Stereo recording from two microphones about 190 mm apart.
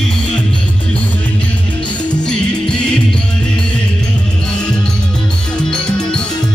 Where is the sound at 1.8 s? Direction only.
5° left (ahead or behind).